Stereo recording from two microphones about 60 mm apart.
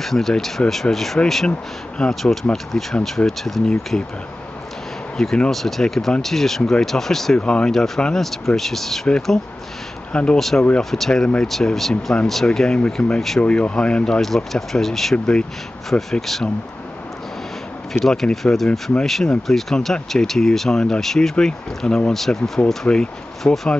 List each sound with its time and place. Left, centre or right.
0.0 s speech: centre
2.0 s speech: centre
2.5 s speech: centre
5.1 s speech: centre
10.1 s speech: centre
10.8 s speech: centre
11.9 s speech: centre
12.3 s speech: centre
14.2 s speech: centre
18.0 s speech: centre